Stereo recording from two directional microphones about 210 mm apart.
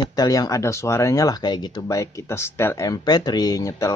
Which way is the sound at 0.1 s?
15° left (ahead or behind).